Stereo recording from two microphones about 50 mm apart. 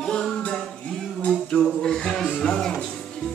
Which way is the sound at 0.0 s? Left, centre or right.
Centre.